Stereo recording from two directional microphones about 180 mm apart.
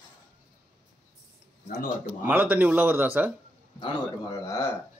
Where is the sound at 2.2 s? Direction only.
10° right (ahead or behind).